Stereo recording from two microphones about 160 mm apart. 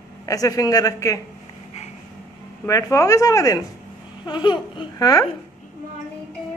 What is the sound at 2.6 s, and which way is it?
A woman's voice, 20° left (ahead or behind).